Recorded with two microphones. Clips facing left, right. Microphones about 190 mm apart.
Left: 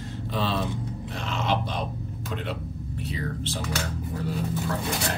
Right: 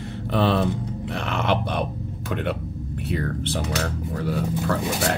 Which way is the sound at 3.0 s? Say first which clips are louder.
Right 5 dB; 55° right (ahead or behind).